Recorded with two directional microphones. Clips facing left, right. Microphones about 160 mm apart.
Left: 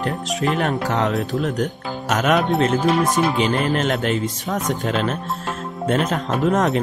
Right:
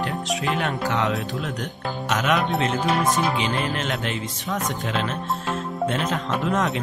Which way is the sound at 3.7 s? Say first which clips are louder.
Left 7 dB; 45° left (ahead or behind).